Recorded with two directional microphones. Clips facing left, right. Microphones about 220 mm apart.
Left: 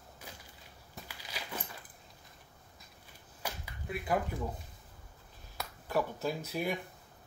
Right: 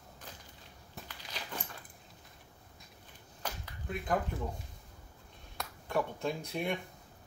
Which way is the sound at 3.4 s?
5° left (ahead or behind).